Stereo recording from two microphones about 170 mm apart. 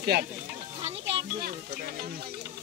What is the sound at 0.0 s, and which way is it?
Speech, 70° right (ahead or behind).